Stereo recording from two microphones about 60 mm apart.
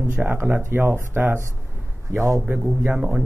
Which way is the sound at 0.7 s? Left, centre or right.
Right.